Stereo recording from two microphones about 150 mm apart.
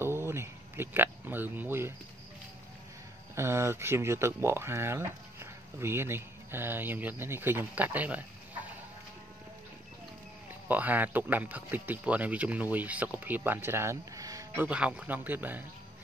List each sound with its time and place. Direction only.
0.0 s a sound: 15° right (ahead or behind)
3.3 s speech: 20° right (ahead or behind)
10.7 s speech: 10° right (ahead or behind)